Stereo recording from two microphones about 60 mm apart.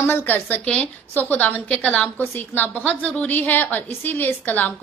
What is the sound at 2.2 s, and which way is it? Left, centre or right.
A woman's voice, left.